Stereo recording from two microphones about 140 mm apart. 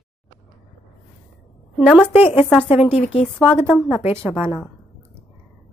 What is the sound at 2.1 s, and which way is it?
A woman's voice, 45° left (ahead or behind).